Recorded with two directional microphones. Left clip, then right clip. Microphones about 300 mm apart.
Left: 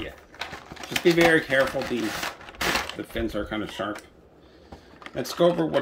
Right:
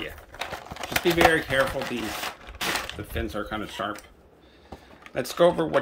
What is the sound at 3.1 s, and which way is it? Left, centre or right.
Speech, centre.